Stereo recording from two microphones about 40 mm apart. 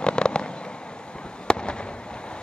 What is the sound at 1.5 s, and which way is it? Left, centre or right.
Fireworks, left.